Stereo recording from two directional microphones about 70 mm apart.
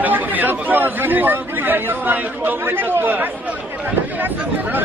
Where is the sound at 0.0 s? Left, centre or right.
Right.